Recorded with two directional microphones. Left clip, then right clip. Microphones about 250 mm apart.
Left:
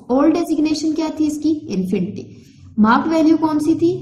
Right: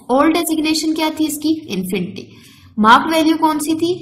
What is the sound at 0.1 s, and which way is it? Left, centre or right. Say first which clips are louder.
A woman's voice: right 2 dB; right.